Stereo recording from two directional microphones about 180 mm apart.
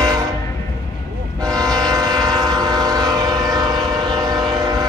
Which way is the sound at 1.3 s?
20° right (ahead or behind).